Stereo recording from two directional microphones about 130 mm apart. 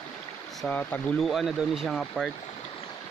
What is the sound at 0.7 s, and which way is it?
Speech, 15° left (ahead or behind).